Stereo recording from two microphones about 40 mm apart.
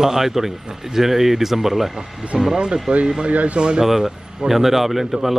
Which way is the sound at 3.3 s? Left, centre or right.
Right.